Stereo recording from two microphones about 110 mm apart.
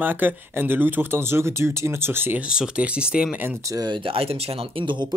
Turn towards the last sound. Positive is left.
turn(degrees=-50)  # may be behind; listen again after turning